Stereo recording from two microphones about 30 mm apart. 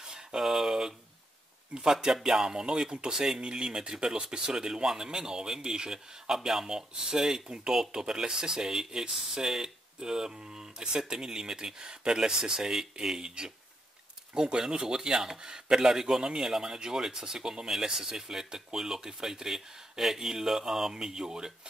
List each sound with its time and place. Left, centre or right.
0.0 s a sound: right
0.4 s speech: centre
2.2 s a man's voice: centre
3.1 s speech: centre
3.3 s a man's voice: right
14.3 s a man's voice: right